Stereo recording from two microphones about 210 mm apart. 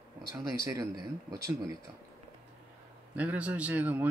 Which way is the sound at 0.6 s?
15° right (ahead or behind).